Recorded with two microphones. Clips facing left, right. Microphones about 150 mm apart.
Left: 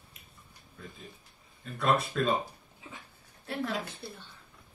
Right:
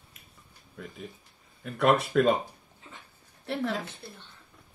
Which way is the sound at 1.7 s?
75° right (ahead or behind).